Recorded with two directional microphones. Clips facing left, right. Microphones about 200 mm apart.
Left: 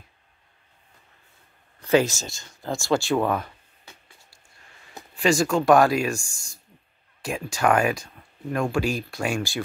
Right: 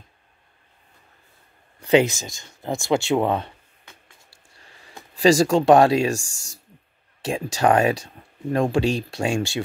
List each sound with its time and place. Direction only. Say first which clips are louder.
1.8 s a sound: right 3 dB; 15° right (ahead or behind)
2.1 s speech: even; 15° right (ahead or behind)
5.1 s speech: right 5 dB; 35° right (ahead or behind)
6.1 s speech: right 3 dB; 90° right
7.2 s a sound: right 4 dB; 30° right (ahead or behind)
7.5 s speech: right 3 dB; 30° right (ahead or behind)